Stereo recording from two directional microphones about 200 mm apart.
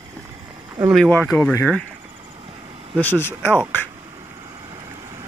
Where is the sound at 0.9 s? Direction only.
Centre (ahead or behind).